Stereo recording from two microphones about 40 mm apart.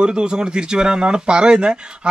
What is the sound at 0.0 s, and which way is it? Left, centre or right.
Speech, right.